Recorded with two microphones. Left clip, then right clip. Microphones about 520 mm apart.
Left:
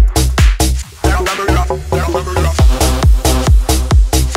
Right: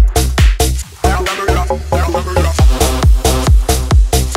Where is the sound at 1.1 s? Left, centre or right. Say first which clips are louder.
Even; centre.